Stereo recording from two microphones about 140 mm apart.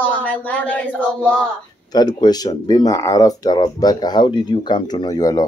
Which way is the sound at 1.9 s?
30° left (ahead or behind).